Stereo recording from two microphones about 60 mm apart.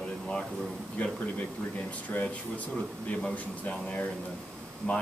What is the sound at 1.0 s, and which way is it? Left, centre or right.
Speech, left.